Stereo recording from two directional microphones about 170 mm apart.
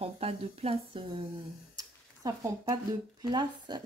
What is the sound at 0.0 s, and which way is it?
A woman's voice, 35° right (ahead or behind).